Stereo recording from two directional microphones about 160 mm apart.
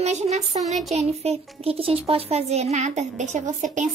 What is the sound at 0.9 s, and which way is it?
A child's voice, 40° right (ahead or behind).